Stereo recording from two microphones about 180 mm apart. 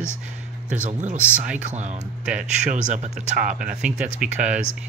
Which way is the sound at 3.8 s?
5° right (ahead or behind).